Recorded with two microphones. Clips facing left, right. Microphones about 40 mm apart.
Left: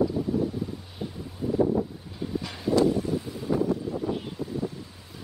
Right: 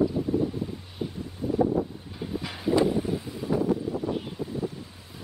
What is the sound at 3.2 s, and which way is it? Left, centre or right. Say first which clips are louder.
Wind: even; centre.